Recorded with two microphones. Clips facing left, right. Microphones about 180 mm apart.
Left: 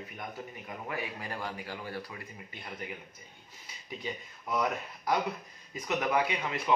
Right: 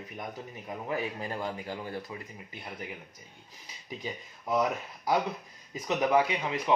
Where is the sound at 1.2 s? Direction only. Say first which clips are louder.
Right 4 dB; 20° right (ahead or behind).